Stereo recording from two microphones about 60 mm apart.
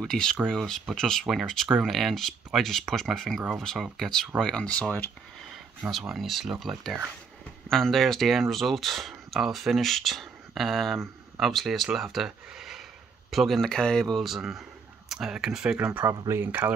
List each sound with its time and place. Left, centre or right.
0.0 s speech: centre
5.9 s speech: centre
14.2 s speech: centre
15.8 s speech: right
16.3 s speech: right